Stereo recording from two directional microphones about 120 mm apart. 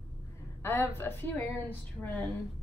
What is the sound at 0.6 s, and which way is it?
A woman's voice, 20° left (ahead or behind).